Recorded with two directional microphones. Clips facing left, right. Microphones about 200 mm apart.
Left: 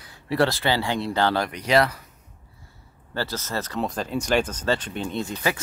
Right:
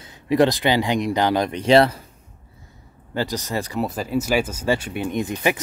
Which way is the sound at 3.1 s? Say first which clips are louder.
Right 4 dB; 15° right (ahead or behind).